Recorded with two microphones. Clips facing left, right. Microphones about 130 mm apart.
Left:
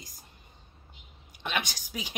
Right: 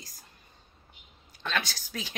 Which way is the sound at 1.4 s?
15° left (ahead or behind).